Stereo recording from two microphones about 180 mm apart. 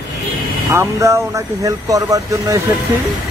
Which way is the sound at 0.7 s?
15° right (ahead or behind).